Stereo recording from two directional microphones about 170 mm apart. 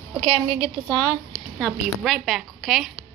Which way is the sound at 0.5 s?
30° right (ahead or behind).